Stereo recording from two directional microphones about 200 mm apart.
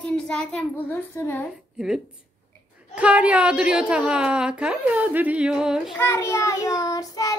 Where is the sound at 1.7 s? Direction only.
5° right (ahead or behind).